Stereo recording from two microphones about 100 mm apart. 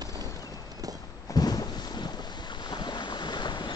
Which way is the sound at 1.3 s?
40° left (ahead or behind).